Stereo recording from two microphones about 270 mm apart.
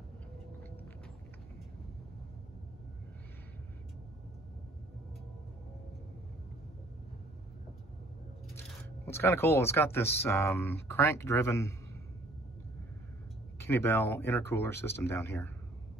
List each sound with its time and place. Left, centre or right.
8.5 s speech: centre
13.7 s speech: centre